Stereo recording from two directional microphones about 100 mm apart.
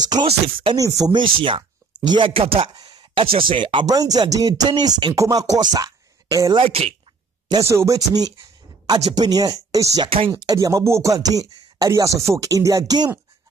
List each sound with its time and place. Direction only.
0.0 s speech: 45° right (ahead or behind)
1.1 s speech: 55° right (ahead or behind)
2.7 s a sound: 45° right (ahead or behind)
3.2 s speech: 60° right (ahead or behind)
3.8 s speech: 40° right (ahead or behind)
6.6 s speech: 80° right
7.6 s speech: 30° right (ahead or behind)
10.0 s speech: 65° right (ahead or behind)
10.4 s speech: 35° right (ahead or behind)